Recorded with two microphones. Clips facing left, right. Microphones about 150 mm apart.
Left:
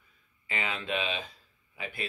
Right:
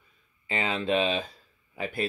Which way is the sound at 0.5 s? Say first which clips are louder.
Right 6 dB; 30° right (ahead or behind).